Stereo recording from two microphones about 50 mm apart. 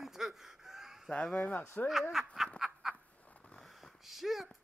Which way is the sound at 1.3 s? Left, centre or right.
Left.